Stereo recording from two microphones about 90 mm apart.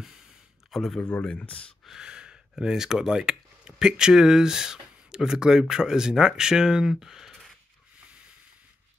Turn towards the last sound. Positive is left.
turn(degrees=0)  # may be behind; listen again after turning